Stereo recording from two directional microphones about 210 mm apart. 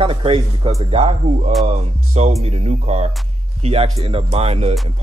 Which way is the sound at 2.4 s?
30° right (ahead or behind).